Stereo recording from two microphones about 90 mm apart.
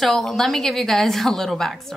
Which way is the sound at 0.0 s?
5° left (ahead or behind).